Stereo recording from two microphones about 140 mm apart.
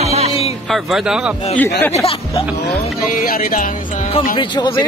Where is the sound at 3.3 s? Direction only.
90° left.